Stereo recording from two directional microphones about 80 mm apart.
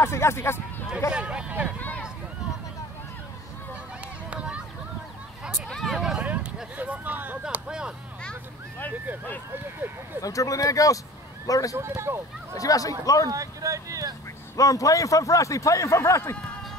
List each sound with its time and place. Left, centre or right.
0.0 s speech: left
1.1 s speech: centre
1.8 s a sound: centre
4.3 s a sound: centre
5.7 s speech: centre
6.2 s speech: centre
7.5 s speech: centre
10.2 s a man's voice: left
11.7 s speech: right
12.5 s a man's voice: left
13.3 s speech: right
14.6 s a man's voice: left